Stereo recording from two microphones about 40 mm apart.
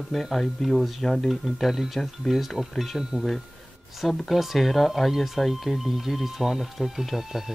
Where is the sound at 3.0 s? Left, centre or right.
Centre.